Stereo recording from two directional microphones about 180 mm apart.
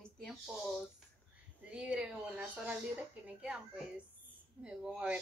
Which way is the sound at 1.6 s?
5° right (ahead or behind).